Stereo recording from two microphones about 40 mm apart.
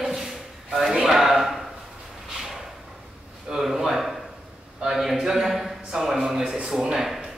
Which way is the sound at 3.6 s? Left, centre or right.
Centre.